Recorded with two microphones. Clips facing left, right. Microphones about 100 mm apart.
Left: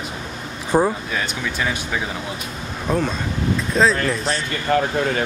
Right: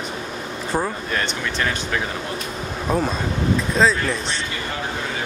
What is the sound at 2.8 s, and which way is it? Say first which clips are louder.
Speech: even; 5° right (ahead or behind).